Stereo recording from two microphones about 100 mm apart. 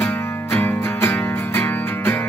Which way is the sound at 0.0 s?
20° left (ahead or behind).